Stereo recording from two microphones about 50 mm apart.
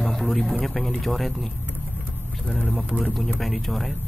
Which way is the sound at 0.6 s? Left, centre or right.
Centre.